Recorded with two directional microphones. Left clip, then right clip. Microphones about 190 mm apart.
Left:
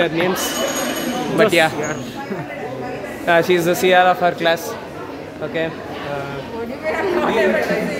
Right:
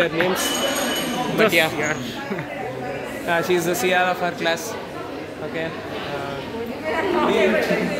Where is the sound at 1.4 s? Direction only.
45° left (ahead or behind).